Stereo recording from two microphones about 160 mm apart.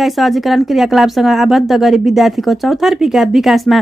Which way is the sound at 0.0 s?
Centre (ahead or behind).